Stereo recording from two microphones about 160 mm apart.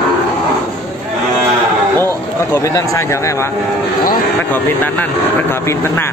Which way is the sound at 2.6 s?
20° left (ahead or behind).